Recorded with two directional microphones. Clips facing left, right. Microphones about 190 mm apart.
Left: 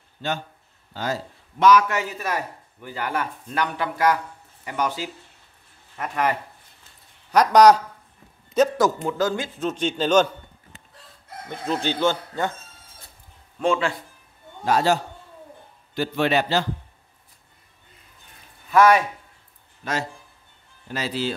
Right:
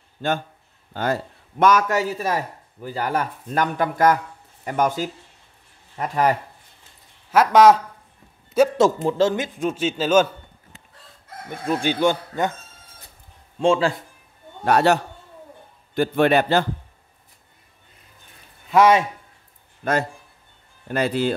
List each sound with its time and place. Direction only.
0.2 s a man's voice: 50° right (ahead or behind)
5.9 s speech: 35° right (ahead or behind)
7.2 s speech: 5° right (ahead or behind)
8.7 s a man's voice: 25° right (ahead or behind); by 10.2 s 5° right (ahead or behind)
11.5 s a man's voice: 10° right (ahead or behind)
13.6 s speech: 30° right (ahead or behind)
14.6 s a man's voice: 65° right (ahead or behind)
15.9 s a man's voice: 50° right (ahead or behind)
18.7 s speech: 20° right (ahead or behind)
19.8 s a man's voice: 55° right (ahead or behind)